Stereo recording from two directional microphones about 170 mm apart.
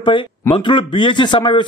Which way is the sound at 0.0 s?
30° left (ahead or behind).